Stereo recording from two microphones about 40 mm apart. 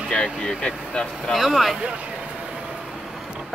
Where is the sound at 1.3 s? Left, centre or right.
Centre.